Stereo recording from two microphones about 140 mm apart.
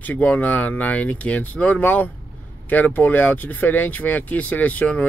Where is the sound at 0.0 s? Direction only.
10° left (ahead or behind).